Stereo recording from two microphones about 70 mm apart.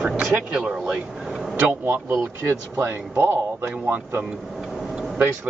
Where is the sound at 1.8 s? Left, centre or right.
Right.